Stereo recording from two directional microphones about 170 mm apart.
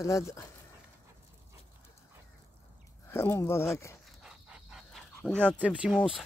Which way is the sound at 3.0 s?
15° left (ahead or behind).